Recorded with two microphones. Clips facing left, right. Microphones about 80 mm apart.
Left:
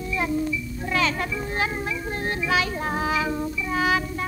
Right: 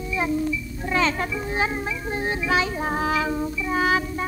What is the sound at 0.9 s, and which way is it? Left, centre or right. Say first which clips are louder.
Speech: right 2 dB; centre.